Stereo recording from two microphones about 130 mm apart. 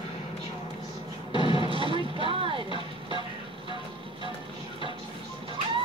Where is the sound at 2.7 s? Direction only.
40° left (ahead or behind).